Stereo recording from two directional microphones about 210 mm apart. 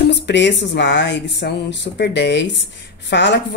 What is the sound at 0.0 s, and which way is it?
A woman's voice, 55° left (ahead or behind).